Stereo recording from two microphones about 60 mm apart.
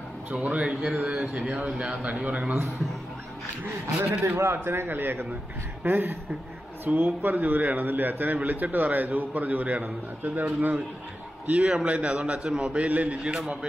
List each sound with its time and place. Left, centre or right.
0.3 s a man's voice: right
0.9 s a man's voice: right; by 2.0 s centre
2.0 s a man's voice: right
3.8 s a man's voice: right
11.6 s a man's voice: centre